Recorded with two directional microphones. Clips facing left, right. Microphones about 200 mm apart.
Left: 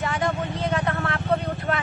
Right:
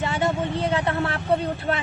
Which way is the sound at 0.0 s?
25° right (ahead or behind).